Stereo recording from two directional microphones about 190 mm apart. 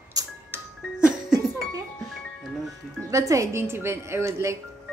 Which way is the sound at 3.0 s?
15° right (ahead or behind).